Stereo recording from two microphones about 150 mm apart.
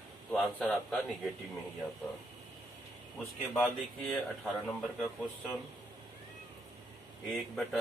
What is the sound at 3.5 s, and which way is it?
Speech, centre (ahead or behind).